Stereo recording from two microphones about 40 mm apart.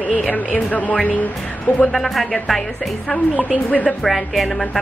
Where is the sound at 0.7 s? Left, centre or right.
Left.